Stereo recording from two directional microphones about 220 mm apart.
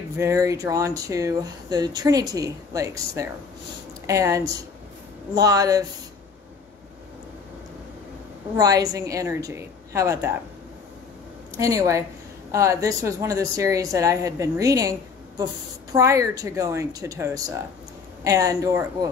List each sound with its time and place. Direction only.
0.2 s speech: 15° right (ahead or behind)
8.5 s speech: 15° right (ahead or behind)
11.6 s speech: 15° right (ahead or behind)